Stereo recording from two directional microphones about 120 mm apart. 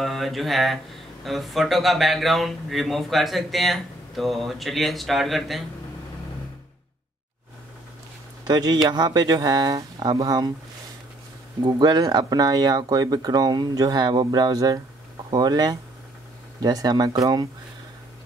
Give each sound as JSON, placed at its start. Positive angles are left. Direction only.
{"t": 0.0, "sound": "speech", "side_deg": 0}
{"t": 8.5, "sound": "speech", "side_deg": -35}
{"t": 11.6, "sound": "speech", "side_deg": -35}